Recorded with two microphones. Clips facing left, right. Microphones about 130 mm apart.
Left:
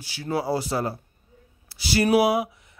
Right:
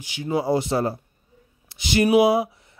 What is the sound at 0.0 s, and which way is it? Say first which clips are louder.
A man's voice: right 3 dB; 15° right (ahead or behind).